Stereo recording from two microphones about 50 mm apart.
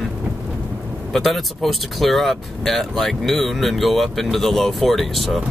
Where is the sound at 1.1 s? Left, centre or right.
Centre.